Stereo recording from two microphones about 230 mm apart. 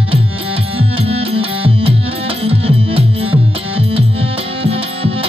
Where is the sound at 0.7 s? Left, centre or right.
Right.